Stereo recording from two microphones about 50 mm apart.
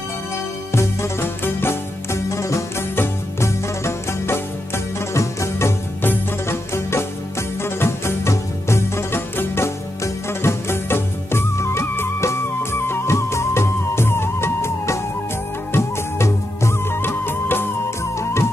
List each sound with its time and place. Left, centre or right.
0.7 s music: left
3.0 s music: left
5.1 s music: left
6.5 s music: left
17.0 s music: left
18.2 s music: left